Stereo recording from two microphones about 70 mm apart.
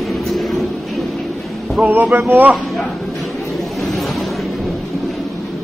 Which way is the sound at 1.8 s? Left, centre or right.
Right.